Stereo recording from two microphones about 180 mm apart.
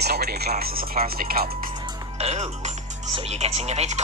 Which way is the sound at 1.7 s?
25° right (ahead or behind).